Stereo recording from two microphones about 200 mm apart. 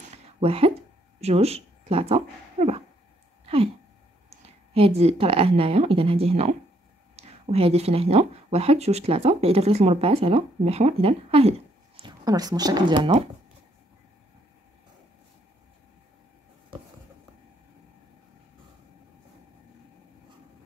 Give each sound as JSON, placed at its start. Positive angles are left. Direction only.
{"t": 0.4, "sound": "speech", "side_deg": -30}
{"t": 3.4, "sound": "a sound", "side_deg": -30}
{"t": 4.3, "sound": "a woman's voice", "side_deg": -30}